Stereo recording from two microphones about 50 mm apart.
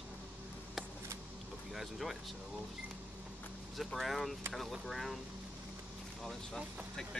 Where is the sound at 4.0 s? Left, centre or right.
Centre.